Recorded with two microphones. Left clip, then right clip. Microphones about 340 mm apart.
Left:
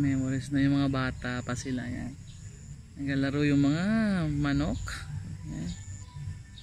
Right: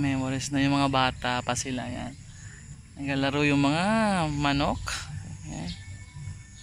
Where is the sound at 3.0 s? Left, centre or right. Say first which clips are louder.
Right 3 dB; centre.